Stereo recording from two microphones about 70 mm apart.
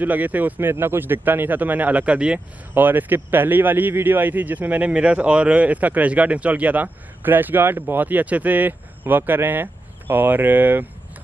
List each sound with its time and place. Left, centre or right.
0.0 s speech: right
2.7 s speech: right